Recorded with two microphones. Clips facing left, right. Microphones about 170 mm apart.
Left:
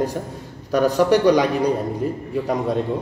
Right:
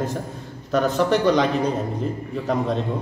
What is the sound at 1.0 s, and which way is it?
Speech, 15° left (ahead or behind).